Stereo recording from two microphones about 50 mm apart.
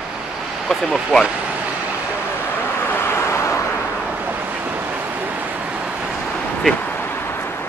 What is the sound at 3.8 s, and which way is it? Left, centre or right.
Vehicle, right.